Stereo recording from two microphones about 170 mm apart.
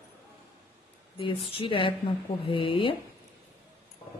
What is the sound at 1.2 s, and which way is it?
A woman's voice, 30° left (ahead or behind).